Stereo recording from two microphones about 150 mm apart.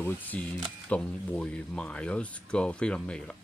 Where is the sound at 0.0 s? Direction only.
10° left (ahead or behind).